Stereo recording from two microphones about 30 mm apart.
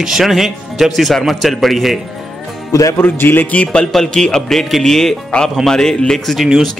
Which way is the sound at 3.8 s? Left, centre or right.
Centre.